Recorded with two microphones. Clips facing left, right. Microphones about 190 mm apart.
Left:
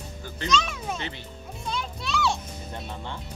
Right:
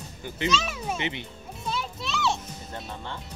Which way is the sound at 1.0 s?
20° right (ahead or behind).